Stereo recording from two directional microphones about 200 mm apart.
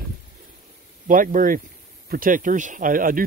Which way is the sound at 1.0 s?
40° right (ahead or behind).